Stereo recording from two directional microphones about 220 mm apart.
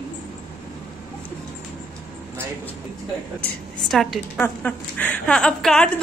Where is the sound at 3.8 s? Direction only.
Centre (ahead or behind).